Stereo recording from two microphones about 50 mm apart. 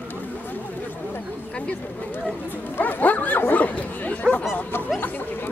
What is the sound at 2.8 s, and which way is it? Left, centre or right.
Speech, left.